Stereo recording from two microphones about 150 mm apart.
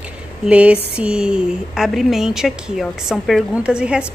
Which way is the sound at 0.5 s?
10° right (ahead or behind).